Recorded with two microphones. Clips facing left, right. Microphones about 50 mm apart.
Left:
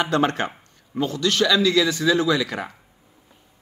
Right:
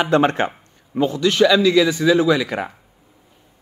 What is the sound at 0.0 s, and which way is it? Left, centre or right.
A man's voice, right.